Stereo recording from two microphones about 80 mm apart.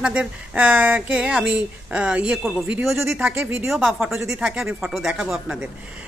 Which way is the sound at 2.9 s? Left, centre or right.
Right.